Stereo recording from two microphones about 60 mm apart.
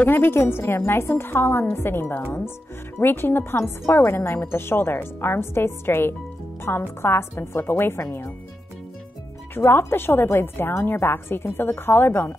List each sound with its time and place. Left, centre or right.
0.0 s a woman's voice: left
9.6 s speech: left